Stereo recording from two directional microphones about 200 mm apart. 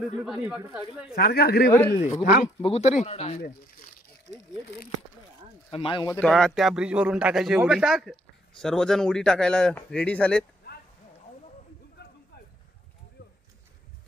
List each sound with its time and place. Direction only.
0.2 s speech: 5° right (ahead or behind)
1.1 s speech: 50° left (ahead or behind)
1.7 s speech: 10° left (ahead or behind)
2.0 s speech: 30° left (ahead or behind)
3.3 s speech: 45° left (ahead or behind)
5.7 s speech: 25° left (ahead or behind)
6.1 s speech: 5° left (ahead or behind)
13.2 s a sound: 50° left (ahead or behind)